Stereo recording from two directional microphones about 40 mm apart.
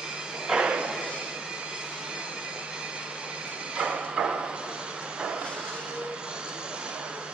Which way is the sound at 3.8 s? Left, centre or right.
Right.